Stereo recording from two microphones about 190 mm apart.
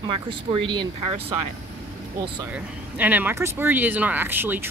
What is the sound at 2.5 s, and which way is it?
Speech, 10° right (ahead or behind).